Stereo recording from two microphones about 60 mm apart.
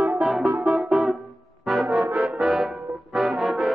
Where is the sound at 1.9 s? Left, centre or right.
Right.